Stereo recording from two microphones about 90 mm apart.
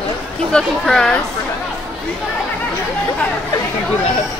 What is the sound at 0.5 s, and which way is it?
Speech, 10° left (ahead or behind).